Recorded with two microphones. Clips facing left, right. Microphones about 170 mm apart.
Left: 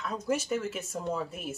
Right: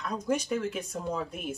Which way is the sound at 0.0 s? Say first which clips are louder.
Right 1 dB; 5° left (ahead or behind).